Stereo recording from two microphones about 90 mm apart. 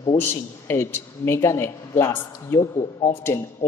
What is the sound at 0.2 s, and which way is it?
Speech, 25° left (ahead or behind).